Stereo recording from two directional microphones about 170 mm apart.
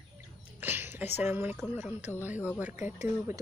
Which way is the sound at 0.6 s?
10° right (ahead or behind).